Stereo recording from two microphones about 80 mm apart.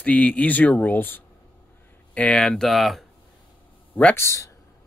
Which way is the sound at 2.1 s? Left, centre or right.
Centre.